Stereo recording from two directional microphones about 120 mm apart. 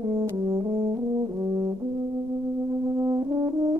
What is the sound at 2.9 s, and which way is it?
Brass instrument, 35° right (ahead or behind).